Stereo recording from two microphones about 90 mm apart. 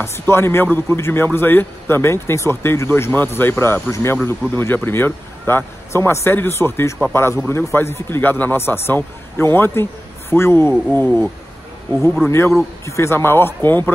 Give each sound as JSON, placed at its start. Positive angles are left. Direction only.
{"t": 0.0, "sound": "speech", "side_deg": 30}
{"t": 12.3, "sound": "speech", "side_deg": 30}